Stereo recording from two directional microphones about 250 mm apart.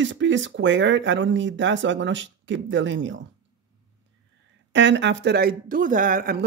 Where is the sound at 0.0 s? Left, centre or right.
Right.